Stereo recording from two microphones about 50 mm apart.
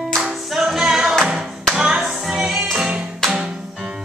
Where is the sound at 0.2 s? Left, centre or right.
Centre.